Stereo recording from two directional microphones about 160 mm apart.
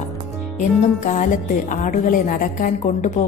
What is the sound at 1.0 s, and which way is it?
A woman's voice, 55° left (ahead or behind).